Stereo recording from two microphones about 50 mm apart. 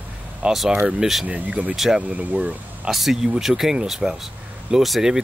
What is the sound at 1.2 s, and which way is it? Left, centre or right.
Speech, right.